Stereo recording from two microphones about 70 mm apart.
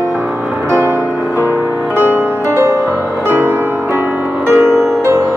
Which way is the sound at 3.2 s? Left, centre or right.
Right.